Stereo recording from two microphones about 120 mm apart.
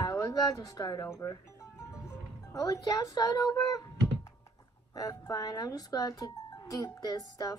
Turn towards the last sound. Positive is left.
turn(degrees=30)  # may be behind; listen again after turning